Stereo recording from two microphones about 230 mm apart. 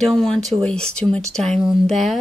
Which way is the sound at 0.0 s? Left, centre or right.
Centre.